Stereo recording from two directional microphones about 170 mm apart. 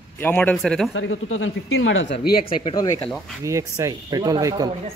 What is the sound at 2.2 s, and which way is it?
Speech, 60° left (ahead or behind).